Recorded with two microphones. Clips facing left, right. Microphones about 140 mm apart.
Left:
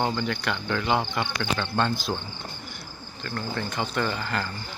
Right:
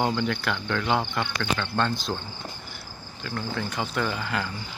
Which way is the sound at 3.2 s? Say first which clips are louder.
Even; 5° right (ahead or behind).